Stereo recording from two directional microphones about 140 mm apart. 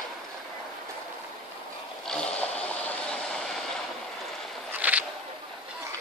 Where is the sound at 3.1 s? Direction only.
5° left (ahead or behind).